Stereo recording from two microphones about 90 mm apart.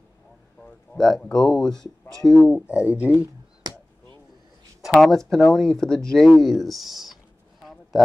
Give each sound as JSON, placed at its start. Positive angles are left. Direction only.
{"t": 0.6, "sound": "speech", "side_deg": 5}
{"t": 2.4, "sound": "speech", "side_deg": -15}
{"t": 4.8, "sound": "speech", "side_deg": 0}
{"t": 7.6, "sound": "a sound", "side_deg": 0}